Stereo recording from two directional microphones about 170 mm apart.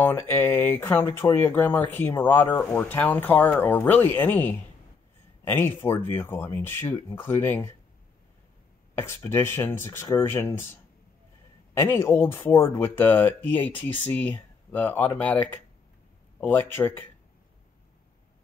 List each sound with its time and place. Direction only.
0.0 s speech: 10° left (ahead or behind)
8.9 s speech: 15° left (ahead or behind)
11.7 s speech: 15° left (ahead or behind)